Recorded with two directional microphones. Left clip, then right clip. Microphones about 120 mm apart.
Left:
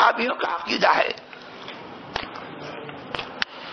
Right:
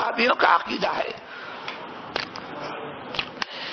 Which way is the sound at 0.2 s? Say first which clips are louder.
Right 5 dB; 15° right (ahead or behind).